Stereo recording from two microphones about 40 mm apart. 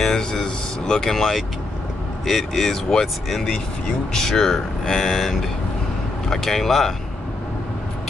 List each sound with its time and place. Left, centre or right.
0.0 s speech: centre